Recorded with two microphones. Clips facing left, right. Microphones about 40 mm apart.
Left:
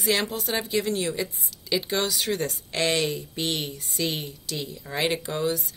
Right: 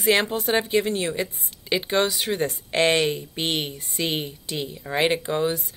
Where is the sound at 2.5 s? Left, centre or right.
Right.